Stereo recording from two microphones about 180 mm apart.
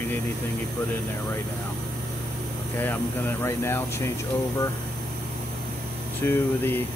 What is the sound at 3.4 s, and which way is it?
Speech, 15° left (ahead or behind).